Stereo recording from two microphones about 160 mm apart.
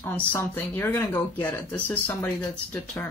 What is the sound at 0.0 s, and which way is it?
Speech, 15° left (ahead or behind).